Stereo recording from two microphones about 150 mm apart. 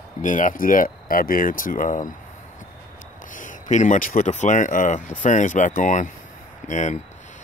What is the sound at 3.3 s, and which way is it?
Speech, 55° left (ahead or behind).